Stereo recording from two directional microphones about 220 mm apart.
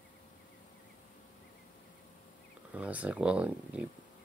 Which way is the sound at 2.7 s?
5° right (ahead or behind).